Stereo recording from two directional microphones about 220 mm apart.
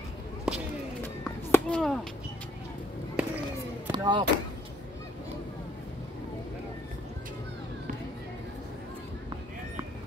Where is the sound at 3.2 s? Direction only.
5° right (ahead or behind).